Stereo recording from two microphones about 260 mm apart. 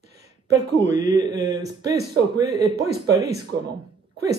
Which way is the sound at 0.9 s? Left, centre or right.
Centre.